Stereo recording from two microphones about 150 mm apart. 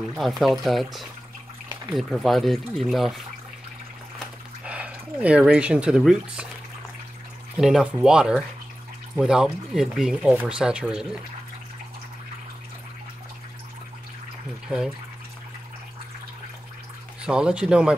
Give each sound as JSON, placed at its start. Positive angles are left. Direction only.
{"t": 0.1, "sound": "speech", "side_deg": 0}
{"t": 4.6, "sound": "speech", "side_deg": -10}
{"t": 7.5, "sound": "speech", "side_deg": -5}
{"t": 17.2, "sound": "speech", "side_deg": -5}